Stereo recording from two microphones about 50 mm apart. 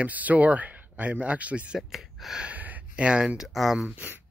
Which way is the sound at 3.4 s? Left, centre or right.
Centre.